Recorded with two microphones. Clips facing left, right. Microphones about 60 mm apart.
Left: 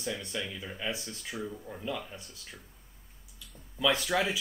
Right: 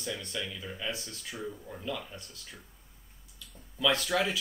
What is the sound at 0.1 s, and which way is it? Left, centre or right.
Speech, centre.